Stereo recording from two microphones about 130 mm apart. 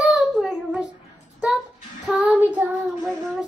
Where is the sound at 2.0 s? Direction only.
10° right (ahead or behind).